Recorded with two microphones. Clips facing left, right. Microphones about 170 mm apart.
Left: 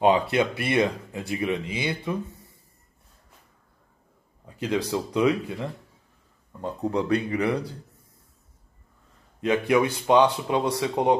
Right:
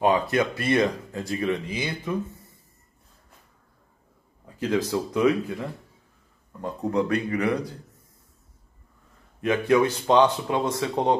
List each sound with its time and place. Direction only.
0.0 s speech: 20° left (ahead or behind)
4.6 s speech: 15° left (ahead or behind)
6.6 s speech: 30° left (ahead or behind)
9.4 s speech: 15° left (ahead or behind)